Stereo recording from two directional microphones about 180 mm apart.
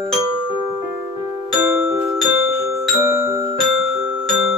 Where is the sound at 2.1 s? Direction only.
Centre (ahead or behind).